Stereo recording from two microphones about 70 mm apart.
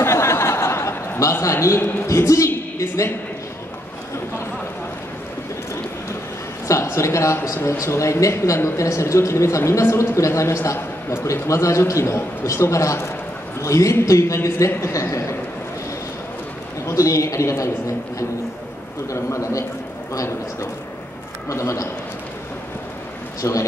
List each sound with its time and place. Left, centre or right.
0.0 s a sound: left
1.4 s speech: left
6.7 s a sound: left
7.4 s speech: left
16.8 s speech: left
19.1 s speech: left
21.5 s speech: left
23.4 s speech: left